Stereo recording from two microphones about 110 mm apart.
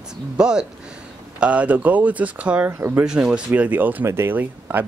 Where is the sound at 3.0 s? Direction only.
10° right (ahead or behind).